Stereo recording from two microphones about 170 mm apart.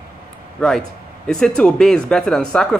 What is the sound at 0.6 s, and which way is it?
Speech, 5° left (ahead or behind).